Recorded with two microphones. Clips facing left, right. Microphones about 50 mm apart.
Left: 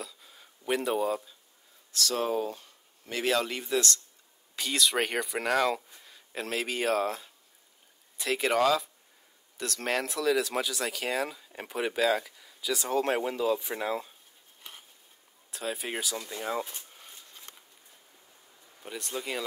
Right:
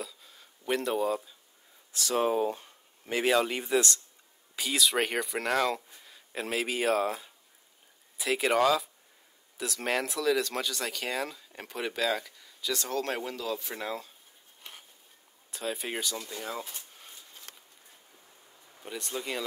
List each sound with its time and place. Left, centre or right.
0.0 s a sound: centre
1.9 s speech: centre
4.6 s speech: centre
15.5 s speech: centre
18.8 s speech: centre